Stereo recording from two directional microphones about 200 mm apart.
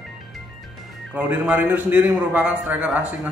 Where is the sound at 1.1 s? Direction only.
5° right (ahead or behind).